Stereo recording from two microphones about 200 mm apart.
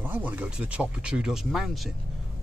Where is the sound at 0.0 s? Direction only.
10° right (ahead or behind).